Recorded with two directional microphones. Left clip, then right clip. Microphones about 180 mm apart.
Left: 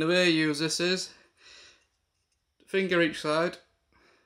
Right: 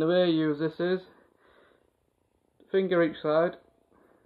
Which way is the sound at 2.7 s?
25° left (ahead or behind).